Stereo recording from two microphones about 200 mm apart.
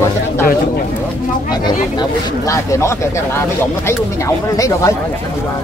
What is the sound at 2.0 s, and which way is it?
Speech, 15° left (ahead or behind).